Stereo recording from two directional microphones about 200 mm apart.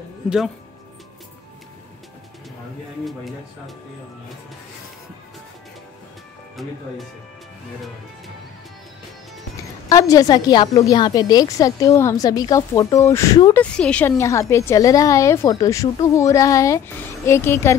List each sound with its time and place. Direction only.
6.5 s speech: centre (ahead or behind)
9.8 s a woman's voice: 15° left (ahead or behind)